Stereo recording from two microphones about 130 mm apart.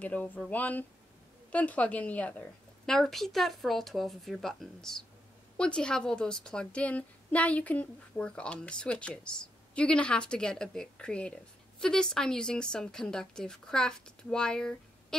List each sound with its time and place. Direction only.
0.0 s a woman's voice: 10° left (ahead or behind)